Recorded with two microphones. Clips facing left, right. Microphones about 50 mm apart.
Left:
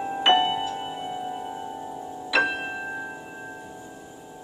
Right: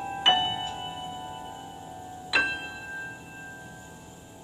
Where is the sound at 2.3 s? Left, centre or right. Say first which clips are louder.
Left 3 dB; centre.